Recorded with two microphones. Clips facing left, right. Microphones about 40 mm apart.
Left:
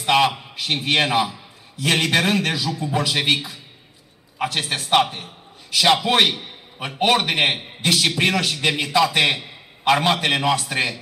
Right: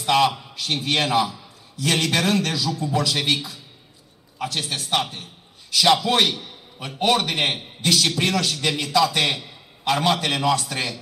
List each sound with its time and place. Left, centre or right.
0.0 s a man's voice: left